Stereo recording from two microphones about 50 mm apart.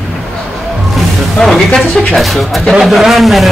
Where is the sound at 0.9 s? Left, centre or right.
Centre.